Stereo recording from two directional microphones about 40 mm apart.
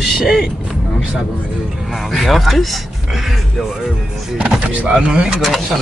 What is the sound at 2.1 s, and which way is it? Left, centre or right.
Speech, centre.